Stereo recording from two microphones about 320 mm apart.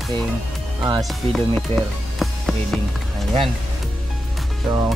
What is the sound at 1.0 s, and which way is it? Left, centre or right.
Speech, centre.